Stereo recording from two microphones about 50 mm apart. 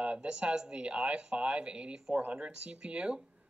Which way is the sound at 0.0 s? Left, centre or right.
Right.